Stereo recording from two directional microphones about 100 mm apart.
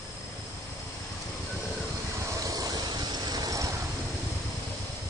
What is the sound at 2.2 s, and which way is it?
Waves, 30° right (ahead or behind).